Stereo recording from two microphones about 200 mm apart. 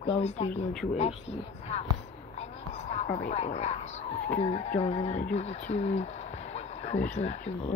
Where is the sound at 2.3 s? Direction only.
35° left (ahead or behind).